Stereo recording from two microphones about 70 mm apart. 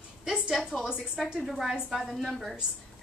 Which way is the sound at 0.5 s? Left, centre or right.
Centre.